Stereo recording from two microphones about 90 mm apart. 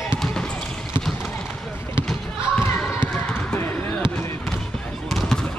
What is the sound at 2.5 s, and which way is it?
Basketball bounce, 25° left (ahead or behind).